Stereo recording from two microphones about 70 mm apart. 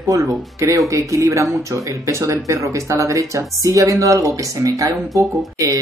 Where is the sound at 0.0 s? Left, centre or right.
Right.